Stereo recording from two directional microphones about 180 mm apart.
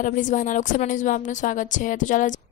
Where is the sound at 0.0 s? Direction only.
45° left (ahead or behind).